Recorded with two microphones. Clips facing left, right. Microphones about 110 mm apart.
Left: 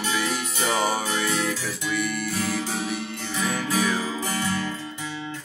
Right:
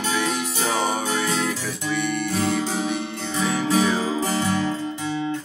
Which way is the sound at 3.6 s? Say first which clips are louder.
Right 5 dB; 20° right (ahead or behind).